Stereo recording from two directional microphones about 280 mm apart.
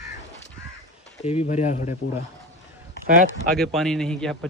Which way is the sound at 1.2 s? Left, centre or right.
Left.